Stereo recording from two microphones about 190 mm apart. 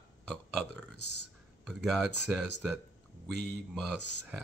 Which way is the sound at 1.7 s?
Centre (ahead or behind).